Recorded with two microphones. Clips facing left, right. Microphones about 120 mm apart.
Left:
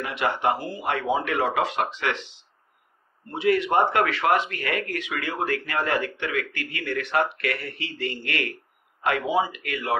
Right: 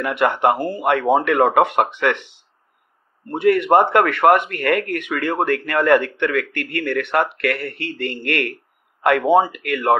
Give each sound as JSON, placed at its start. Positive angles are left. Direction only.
{"t": 0.0, "sound": "speech", "side_deg": -60}